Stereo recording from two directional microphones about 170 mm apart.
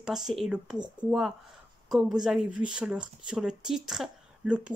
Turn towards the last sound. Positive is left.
turn(degrees=-5)  # may be behind; listen again after turning